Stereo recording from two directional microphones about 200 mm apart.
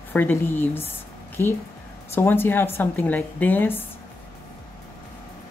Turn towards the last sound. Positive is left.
turn(degrees=10)  # may be behind; listen again after turning